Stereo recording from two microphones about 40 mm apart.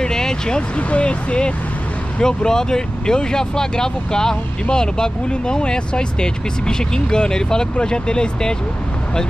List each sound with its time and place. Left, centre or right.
0.0 s vehicle: centre
0.7 s speech: left
2.1 s speech: centre